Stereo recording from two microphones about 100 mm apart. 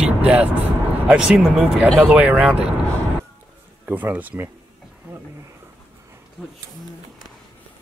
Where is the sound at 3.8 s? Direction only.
15° right (ahead or behind).